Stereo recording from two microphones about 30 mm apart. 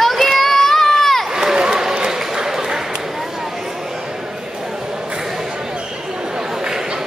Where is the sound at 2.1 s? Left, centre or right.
Centre.